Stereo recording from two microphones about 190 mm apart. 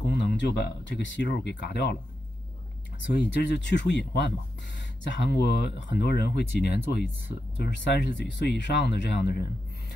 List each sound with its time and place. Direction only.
0.1 s speech: 65° left (ahead or behind)
3.1 s speech: 60° left (ahead or behind)